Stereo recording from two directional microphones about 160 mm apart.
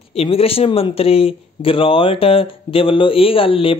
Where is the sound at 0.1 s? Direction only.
35° left (ahead or behind).